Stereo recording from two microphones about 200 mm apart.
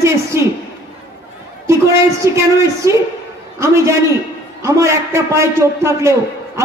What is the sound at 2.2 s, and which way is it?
A man's voice, 15° right (ahead or behind).